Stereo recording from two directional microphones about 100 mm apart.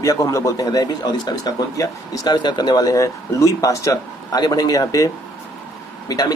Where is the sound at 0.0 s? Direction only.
30° left (ahead or behind).